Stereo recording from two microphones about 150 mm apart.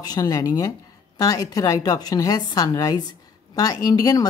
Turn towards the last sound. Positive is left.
turn(degrees=25)  # may be behind; listen again after turning